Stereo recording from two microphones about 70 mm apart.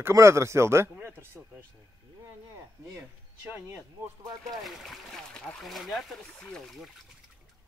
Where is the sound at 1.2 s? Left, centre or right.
Right.